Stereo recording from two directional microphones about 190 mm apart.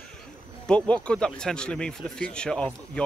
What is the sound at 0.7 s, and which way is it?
Speech, 5° left (ahead or behind).